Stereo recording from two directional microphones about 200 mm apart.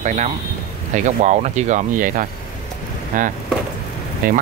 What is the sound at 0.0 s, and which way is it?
Speech, 35° right (ahead or behind).